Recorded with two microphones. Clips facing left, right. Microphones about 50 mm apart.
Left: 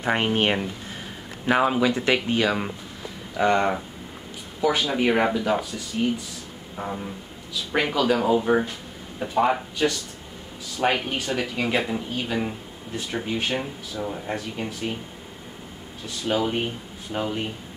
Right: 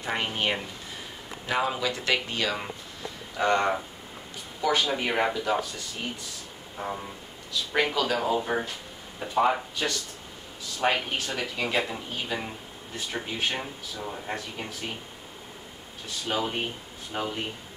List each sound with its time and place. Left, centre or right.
0.0 s speech: left; by 6.1 s centre
7.7 s speech: centre
16.3 s speech: centre